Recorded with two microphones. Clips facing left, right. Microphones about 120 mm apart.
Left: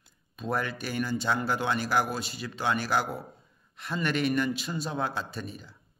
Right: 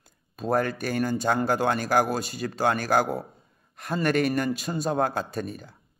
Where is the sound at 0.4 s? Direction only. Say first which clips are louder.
Right 6 dB; 45° right (ahead or behind).